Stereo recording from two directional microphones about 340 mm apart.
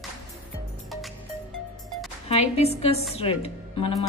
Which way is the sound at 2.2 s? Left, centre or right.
Centre.